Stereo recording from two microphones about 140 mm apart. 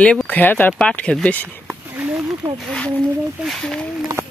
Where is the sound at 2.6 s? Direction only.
5° left (ahead or behind).